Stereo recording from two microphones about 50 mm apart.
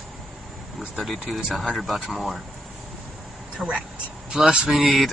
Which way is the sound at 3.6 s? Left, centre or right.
Centre.